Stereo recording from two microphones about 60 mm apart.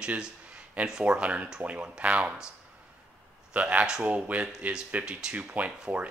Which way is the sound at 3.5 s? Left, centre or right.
Right.